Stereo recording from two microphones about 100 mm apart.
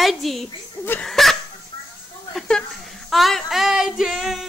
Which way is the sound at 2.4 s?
10° left (ahead or behind).